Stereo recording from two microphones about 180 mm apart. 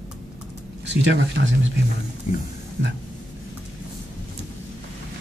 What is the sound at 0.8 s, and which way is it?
Speech, 80° right.